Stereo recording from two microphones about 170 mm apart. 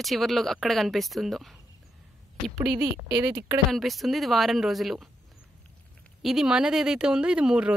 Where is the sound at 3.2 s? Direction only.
20° right (ahead or behind).